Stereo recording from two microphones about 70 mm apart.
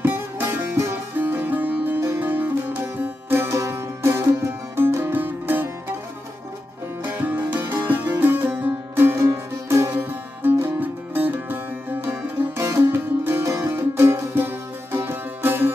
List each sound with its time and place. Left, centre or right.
0.0 s music: right
1.2 s music: right
3.0 s music: right
7.0 s music: right
9.9 s music: right